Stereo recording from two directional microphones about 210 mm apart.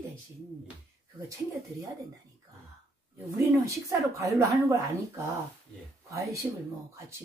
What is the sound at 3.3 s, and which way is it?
Speech, 15° right (ahead or behind).